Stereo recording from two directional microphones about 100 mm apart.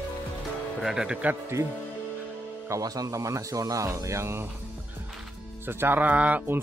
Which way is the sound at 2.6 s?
35° right (ahead or behind).